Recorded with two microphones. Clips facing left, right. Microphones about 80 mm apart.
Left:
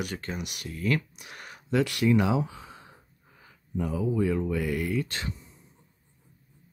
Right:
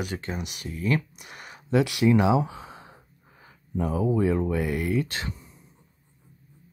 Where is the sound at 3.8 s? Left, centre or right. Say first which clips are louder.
Right 3 dB; right.